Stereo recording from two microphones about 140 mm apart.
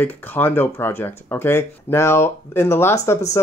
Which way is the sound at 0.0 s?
15° left (ahead or behind).